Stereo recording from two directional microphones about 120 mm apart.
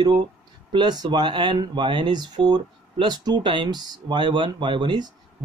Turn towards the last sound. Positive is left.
turn(degrees=-40)  # may be behind; listen again after turning